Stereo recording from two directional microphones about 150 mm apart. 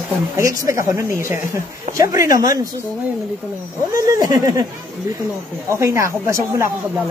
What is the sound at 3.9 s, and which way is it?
Speech, 25° right (ahead or behind).